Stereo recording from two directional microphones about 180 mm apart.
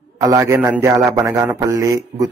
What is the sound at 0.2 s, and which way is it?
A man's voice, 15° right (ahead or behind).